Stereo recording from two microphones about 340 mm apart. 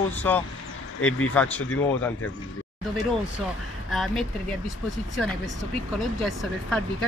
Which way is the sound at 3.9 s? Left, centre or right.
Centre.